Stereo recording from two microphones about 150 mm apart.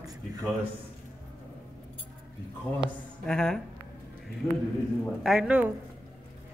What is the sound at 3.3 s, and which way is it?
Speech, 5° left (ahead or behind).